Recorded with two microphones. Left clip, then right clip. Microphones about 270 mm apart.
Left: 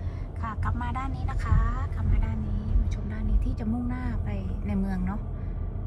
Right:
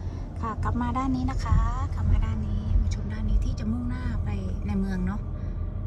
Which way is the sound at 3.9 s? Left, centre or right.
Centre.